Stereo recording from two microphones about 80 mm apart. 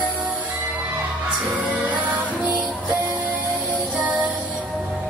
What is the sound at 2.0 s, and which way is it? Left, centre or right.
Music, centre.